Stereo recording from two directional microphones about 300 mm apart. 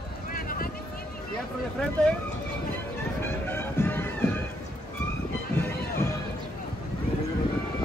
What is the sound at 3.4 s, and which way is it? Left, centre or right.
Music, centre.